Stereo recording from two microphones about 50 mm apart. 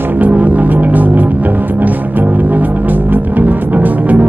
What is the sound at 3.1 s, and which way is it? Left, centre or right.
Music, right.